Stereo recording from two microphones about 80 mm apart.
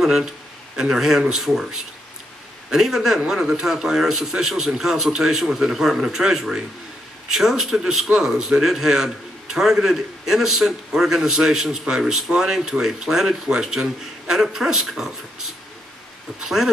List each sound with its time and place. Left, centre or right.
0.0 s a man's voice: centre
2.7 s a man's voice: centre